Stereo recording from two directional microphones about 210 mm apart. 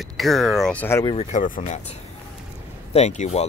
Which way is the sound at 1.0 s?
30° left (ahead or behind).